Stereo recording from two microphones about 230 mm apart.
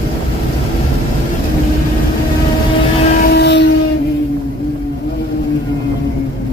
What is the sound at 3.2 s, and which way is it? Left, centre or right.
Train, left.